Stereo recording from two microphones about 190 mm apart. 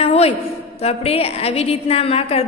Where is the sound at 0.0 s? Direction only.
30° left (ahead or behind).